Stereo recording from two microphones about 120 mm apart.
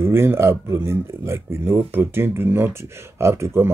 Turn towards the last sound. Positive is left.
turn(degrees=-20)  # may be behind; listen again after turning